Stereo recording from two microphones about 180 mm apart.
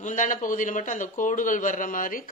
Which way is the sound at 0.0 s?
45° left (ahead or behind).